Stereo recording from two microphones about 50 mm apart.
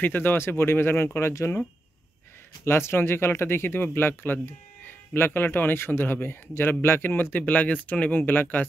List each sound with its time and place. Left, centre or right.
0.0 s speech: left
0.5 s speech: left
2.6 s speech: left